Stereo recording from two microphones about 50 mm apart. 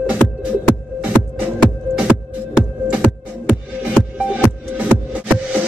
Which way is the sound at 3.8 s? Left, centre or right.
Right.